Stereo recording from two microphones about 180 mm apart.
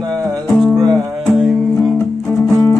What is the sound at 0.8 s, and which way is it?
Music, 20° right (ahead or behind).